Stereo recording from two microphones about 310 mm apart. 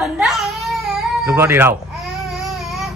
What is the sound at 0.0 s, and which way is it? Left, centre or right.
Baby cry, centre.